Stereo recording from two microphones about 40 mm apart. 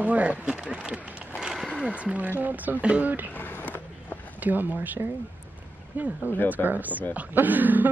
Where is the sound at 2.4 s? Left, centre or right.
Right.